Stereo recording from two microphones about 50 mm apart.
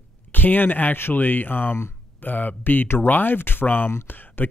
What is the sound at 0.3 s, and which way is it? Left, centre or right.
Speech, left.